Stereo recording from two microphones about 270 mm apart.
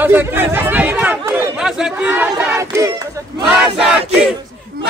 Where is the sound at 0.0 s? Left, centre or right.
Centre.